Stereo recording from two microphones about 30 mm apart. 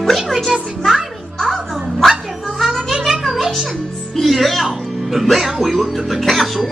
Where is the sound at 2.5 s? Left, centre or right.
Centre.